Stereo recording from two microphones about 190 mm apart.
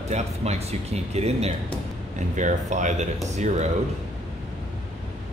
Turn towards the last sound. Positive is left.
turn(degrees=-35)  # may be behind; listen again after turning